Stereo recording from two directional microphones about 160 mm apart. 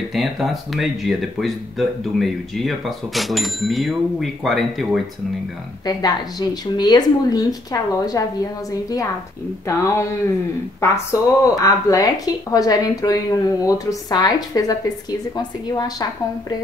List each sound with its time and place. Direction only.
0.1 s speech: centre (ahead or behind)
5.9 s speech: 25° left (ahead or behind)
9.7 s speech: 20° left (ahead or behind)